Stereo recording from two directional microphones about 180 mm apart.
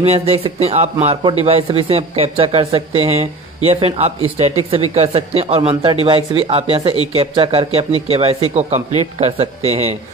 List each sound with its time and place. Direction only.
0.0 s a man's voice: 35° right (ahead or behind)